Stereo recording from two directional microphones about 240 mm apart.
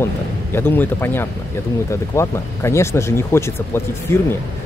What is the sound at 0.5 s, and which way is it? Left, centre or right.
Speech, centre.